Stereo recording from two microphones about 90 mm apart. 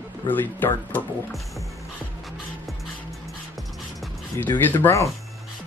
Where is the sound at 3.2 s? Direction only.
Centre (ahead or behind).